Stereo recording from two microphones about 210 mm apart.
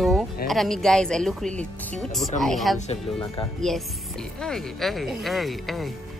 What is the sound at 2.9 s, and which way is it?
Speech, 25° left (ahead or behind).